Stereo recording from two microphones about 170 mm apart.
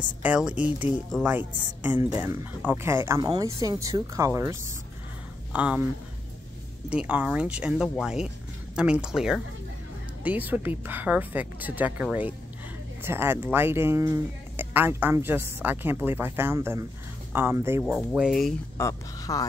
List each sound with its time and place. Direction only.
0.0 s speech: 10° right (ahead or behind)
6.9 s speech: 5° right (ahead or behind)
18.8 s speech: 20° left (ahead or behind)